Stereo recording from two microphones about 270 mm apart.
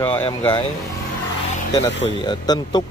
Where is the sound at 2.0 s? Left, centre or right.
Centre.